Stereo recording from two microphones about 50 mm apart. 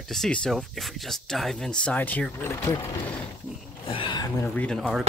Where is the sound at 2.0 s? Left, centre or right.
Left.